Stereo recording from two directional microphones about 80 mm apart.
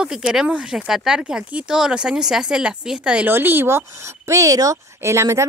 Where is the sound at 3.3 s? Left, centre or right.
Right.